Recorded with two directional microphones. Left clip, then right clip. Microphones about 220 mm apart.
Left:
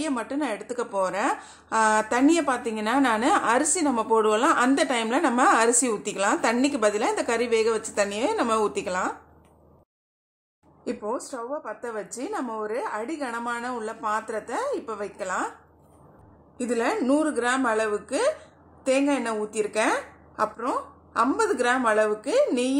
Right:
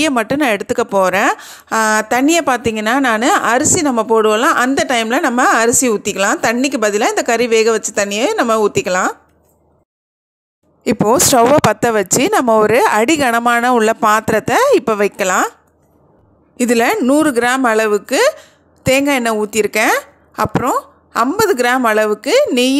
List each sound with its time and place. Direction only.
0.0 s a woman's voice: 35° right (ahead or behind)
10.8 s speech: 45° right (ahead or behind)
16.5 s a woman's voice: 45° right (ahead or behind)